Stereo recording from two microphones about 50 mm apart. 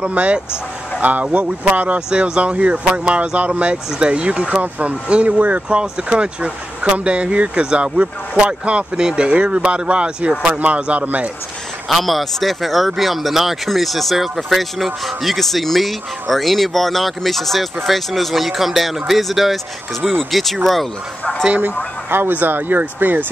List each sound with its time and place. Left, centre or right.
0.0 s speech: right
2.0 s speech: centre; by 5.8 s right
5.8 s speech: centre
11.9 s speech: centre
22.3 s speech: right